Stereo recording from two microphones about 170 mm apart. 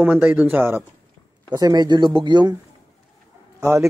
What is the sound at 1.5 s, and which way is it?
Speech, 25° right (ahead or behind).